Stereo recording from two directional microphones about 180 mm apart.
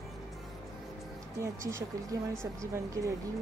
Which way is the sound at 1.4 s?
15° right (ahead or behind).